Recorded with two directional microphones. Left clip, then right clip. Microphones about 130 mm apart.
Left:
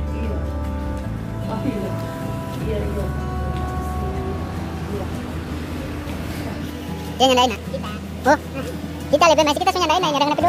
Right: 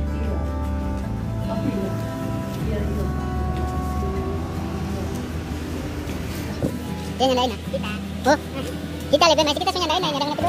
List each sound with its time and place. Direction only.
7.2 s speech: 5° left (ahead or behind)
10.1 s speech: 25° left (ahead or behind)